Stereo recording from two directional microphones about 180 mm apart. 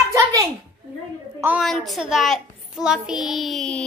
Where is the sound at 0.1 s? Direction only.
20° right (ahead or behind).